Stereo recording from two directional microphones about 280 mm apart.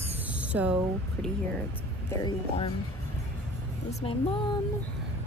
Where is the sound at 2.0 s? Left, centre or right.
Centre.